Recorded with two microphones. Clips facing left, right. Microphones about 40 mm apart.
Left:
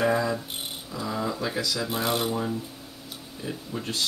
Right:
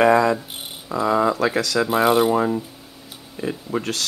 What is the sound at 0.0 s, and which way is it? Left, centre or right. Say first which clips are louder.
Speech: right 9 dB; right.